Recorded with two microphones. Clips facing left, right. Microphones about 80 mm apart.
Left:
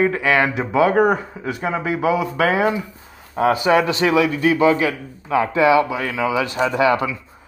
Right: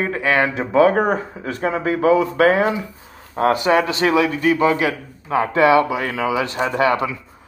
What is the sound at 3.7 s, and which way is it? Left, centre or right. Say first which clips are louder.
Speech: even; right.